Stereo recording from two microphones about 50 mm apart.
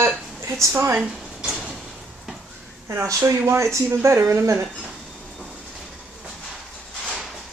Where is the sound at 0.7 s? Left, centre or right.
Right.